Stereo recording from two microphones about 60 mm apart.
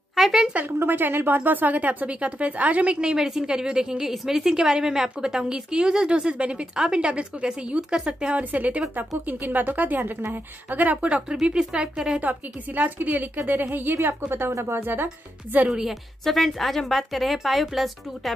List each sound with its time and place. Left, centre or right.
0.1 s a sound: centre
0.7 s a woman's voice: right; by 12.2 s centre
12.2 s a woman's voice: right
15.7 s a woman's voice: centre